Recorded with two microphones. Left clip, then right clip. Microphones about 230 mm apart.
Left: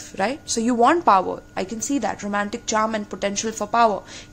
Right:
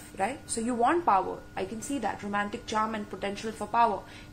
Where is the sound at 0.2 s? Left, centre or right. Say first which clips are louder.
Left 8 dB; left.